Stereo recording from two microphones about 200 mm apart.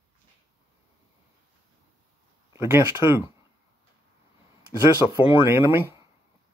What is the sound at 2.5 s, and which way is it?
Speech, 10° right (ahead or behind).